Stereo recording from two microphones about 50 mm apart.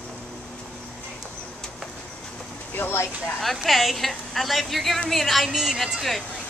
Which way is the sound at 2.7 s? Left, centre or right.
Left.